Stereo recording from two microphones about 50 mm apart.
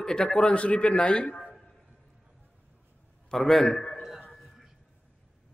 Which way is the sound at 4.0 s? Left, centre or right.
Centre.